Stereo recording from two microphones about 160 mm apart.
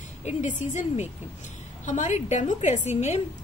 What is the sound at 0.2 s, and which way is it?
A woman's voice, 45° left (ahead or behind).